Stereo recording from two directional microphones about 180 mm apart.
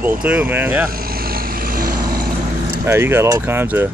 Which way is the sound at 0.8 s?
55° right (ahead or behind).